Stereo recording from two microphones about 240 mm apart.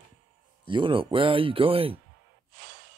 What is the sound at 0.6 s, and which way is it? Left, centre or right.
Speech, right.